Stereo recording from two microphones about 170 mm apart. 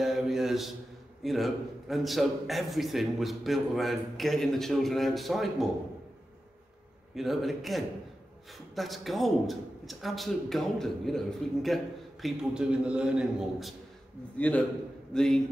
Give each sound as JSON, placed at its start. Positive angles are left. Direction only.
{"t": 0.0, "sound": "a sound", "side_deg": 0}
{"t": 1.2, "sound": "a man's voice", "side_deg": 0}
{"t": 7.2, "sound": "a man's voice", "side_deg": 0}